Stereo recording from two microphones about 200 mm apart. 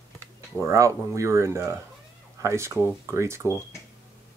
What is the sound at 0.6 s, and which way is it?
Speech, 15° right (ahead or behind).